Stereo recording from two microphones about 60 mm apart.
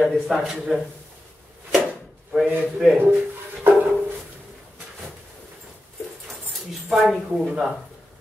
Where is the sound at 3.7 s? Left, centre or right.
Right.